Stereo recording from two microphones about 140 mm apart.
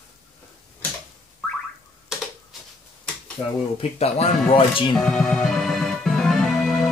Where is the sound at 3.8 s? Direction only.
50° left (ahead or behind).